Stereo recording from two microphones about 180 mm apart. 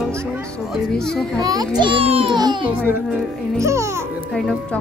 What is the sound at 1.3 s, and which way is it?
A child's voice, 20° right (ahead or behind).